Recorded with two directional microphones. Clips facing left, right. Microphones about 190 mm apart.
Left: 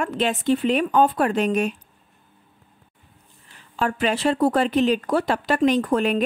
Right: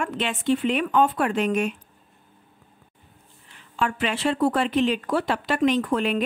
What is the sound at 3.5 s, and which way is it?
A woman's voice, 40° left (ahead or behind).